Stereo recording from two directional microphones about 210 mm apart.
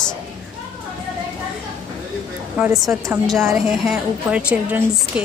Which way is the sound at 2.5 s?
5° right (ahead or behind).